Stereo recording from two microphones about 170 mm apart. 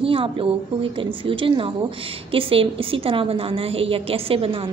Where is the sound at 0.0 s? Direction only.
30° right (ahead or behind).